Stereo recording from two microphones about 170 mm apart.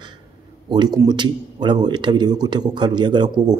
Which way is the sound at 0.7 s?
25° right (ahead or behind).